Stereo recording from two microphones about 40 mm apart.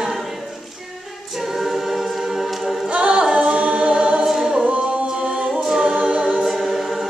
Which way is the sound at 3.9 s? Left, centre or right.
Right.